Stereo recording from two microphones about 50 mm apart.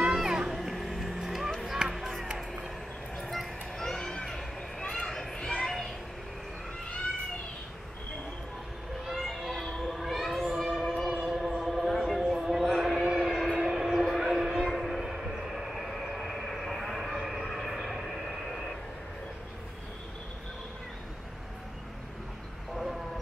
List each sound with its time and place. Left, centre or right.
0.0 s music: centre
0.6 s vehicle: centre
1.7 s music: centre
3.2 s children playing: centre
9.0 s a sound: centre
13.0 s train: centre
13.3 s train: centre
13.7 s a sound: centre
15.4 s train: centre
22.8 s a sound: centre